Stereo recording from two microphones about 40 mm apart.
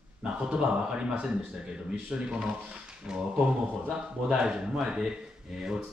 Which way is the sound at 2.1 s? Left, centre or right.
Right.